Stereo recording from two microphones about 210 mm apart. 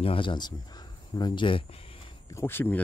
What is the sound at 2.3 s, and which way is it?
Speech, 10° left (ahead or behind).